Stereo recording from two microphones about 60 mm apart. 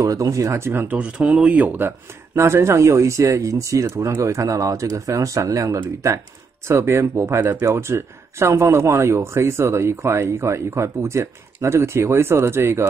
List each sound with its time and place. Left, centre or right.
0.0 s speech: right
0.8 s speech: centre
1.8 s speech: right
6.7 s speech: right